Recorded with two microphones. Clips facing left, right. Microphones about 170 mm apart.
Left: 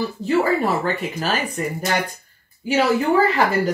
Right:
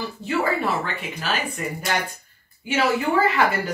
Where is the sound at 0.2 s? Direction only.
40° left (ahead or behind).